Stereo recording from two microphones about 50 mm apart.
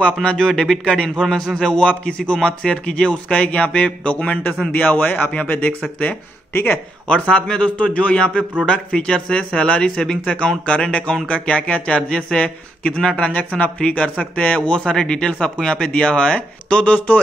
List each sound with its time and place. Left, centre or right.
0.0 s a man's voice: left
0.4 s a man's voice: centre; by 5.8 s left
6.5 s speech: left
7.1 s a man's voice: left
7.7 s a man's voice: left
13.3 s a man's voice: left